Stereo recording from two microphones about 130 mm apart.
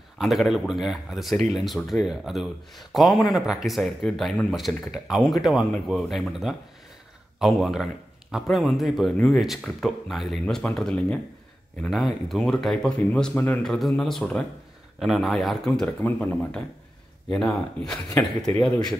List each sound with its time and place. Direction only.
0.2 s speech: centre (ahead or behind)
13.6 s speech: centre (ahead or behind)